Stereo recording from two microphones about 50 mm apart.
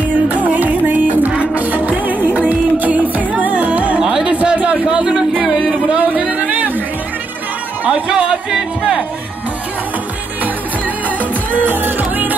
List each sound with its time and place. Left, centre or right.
0.5 s music: right
4.0 s music: centre
4.3 s a sound: right
5.4 s music: right
8.1 s music: right
11.1 s music: right